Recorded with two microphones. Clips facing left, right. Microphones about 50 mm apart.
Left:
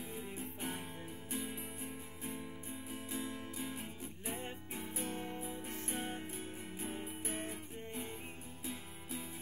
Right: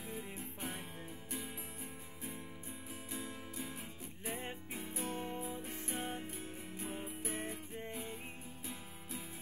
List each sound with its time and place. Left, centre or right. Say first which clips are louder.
0.1 s music: left 1 dB; centre